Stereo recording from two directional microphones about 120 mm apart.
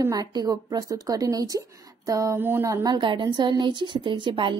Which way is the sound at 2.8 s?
40° right (ahead or behind).